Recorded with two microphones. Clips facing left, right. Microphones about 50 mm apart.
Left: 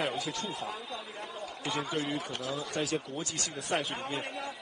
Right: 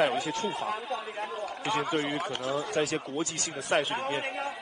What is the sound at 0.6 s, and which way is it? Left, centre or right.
A man's voice, right.